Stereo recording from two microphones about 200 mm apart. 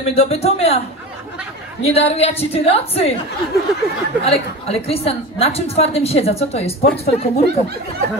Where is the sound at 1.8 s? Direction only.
30° left (ahead or behind).